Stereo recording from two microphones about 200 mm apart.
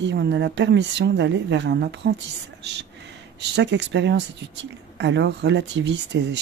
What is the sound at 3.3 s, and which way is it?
Speech, 60° right (ahead or behind).